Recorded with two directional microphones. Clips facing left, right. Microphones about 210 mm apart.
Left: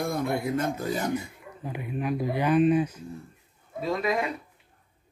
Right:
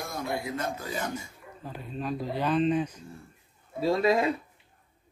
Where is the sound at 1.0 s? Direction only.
15° left (ahead or behind).